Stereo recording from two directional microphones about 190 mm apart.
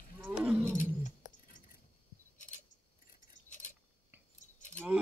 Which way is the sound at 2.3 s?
40° left (ahead or behind).